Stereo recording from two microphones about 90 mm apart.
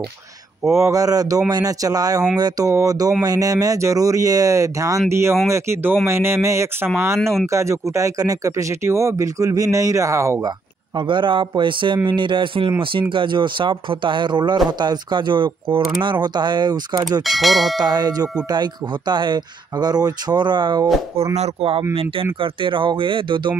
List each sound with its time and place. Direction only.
0.7 s speech: 35° right (ahead or behind)
11.0 s speech: 60° right (ahead or behind)
17.2 s speech: centre (ahead or behind)
17.7 s speech: 50° right (ahead or behind)
21.5 s speech: 90° right; by 23.5 s 65° right (ahead or behind)